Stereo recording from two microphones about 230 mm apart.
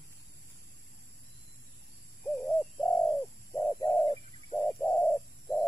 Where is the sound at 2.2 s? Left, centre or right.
Centre.